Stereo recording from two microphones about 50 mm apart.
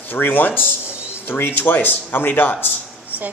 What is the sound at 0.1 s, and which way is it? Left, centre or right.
Speech, left.